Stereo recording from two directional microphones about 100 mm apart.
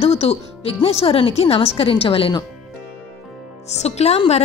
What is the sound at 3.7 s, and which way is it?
Speech, 90° left.